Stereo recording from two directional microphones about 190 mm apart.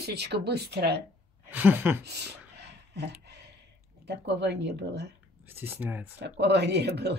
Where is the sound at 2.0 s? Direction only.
60° right (ahead or behind).